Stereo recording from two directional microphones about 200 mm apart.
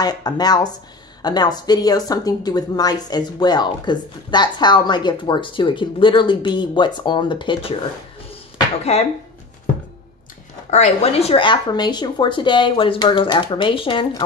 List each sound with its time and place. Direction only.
0.0 s speech: 20° left (ahead or behind)
8.3 s basketball bounce: 30° left (ahead or behind)
10.7 s speech: 30° left (ahead or behind)